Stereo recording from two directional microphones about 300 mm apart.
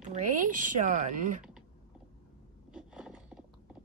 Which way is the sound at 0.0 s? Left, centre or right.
Right.